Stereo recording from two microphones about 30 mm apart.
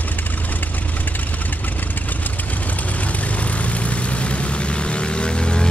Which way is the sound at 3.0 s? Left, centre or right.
Left.